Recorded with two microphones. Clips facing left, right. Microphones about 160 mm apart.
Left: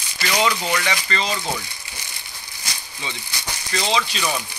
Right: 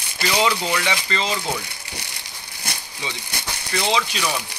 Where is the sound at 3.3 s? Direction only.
55° right (ahead or behind).